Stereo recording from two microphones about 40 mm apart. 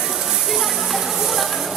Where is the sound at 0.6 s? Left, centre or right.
Centre.